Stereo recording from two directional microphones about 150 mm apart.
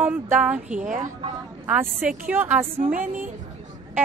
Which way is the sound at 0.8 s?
55° right (ahead or behind).